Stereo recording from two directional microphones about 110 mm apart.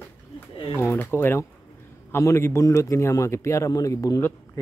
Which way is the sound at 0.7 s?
25° left (ahead or behind).